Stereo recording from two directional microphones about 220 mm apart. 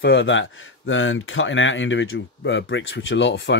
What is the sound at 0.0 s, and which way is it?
Speech, 55° left (ahead or behind).